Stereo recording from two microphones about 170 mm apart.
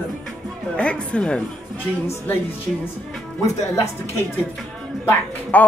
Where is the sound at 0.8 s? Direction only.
5° left (ahead or behind).